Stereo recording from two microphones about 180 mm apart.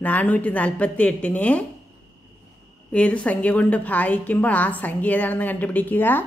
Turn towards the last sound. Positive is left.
turn(degrees=10)  # may be behind; listen again after turning